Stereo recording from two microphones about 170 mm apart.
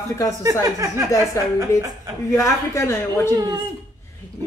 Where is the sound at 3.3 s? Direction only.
25° right (ahead or behind).